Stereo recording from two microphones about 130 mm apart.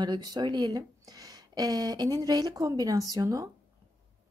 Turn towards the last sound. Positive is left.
turn(degrees=-25)  # may be behind; listen again after turning